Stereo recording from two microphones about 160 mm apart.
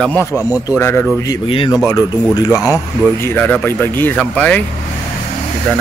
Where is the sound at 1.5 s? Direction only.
35° left (ahead or behind).